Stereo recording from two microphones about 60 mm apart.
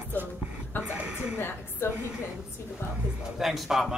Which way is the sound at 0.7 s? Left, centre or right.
Left.